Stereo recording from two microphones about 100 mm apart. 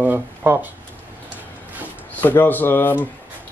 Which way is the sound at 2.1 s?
20° left (ahead or behind).